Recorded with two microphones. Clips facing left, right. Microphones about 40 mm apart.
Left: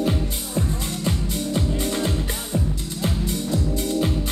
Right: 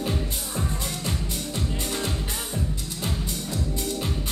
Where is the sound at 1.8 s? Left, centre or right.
Left.